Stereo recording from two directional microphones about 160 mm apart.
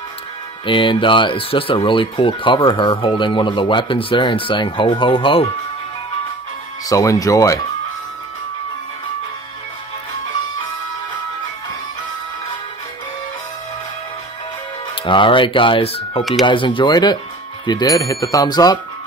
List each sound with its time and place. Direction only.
0.7 s speech: 30° left (ahead or behind)
6.9 s speech: 20° left (ahead or behind)
15.0 s speech: 30° left (ahead or behind)